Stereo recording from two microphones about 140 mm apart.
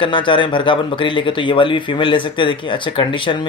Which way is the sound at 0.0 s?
35° left (ahead or behind).